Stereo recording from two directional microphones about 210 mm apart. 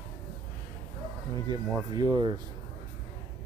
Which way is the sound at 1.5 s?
20° right (ahead or behind).